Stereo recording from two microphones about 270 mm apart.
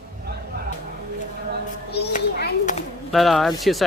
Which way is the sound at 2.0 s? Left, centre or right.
Left.